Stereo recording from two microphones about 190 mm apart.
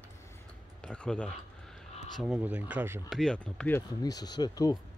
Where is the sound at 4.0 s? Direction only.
20° left (ahead or behind).